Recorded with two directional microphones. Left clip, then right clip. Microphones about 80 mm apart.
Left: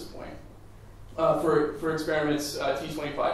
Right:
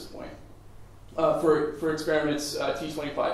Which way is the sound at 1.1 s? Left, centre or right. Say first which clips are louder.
Right 1 dB; right.